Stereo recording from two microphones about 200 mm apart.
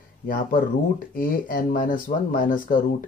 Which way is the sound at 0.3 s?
45° left (ahead or behind).